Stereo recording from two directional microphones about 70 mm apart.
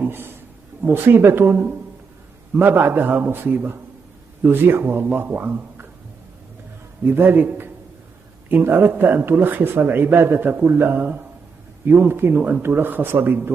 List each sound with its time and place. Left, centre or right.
0.0 s a sound: right
0.8 s a man's voice: right
7.1 s a man's voice: right